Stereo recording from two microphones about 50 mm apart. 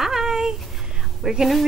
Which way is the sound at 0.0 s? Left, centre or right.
Centre.